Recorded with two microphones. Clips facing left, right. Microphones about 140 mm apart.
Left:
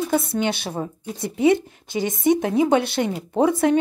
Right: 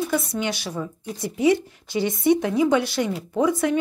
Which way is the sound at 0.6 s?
55° left (ahead or behind).